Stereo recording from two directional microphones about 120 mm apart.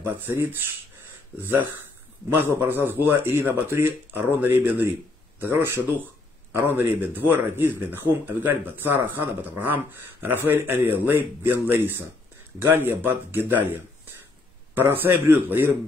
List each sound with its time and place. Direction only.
0.0 s speech: 15° right (ahead or behind)
14.7 s speech: 15° right (ahead or behind)